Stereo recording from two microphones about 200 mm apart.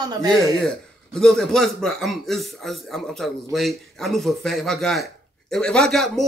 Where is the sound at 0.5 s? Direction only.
5° left (ahead or behind).